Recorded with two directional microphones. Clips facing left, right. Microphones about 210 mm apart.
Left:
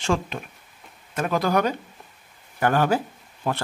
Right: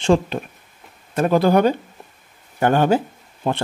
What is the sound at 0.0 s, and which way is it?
Speech, 30° right (ahead or behind).